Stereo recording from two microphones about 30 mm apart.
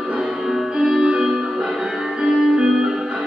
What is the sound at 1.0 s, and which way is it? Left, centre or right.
Music, right.